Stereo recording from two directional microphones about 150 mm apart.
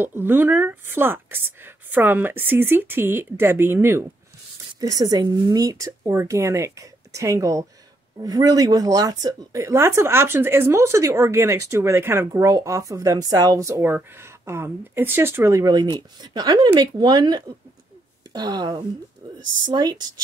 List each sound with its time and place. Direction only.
0.0 s a woman's voice: 15° right (ahead or behind)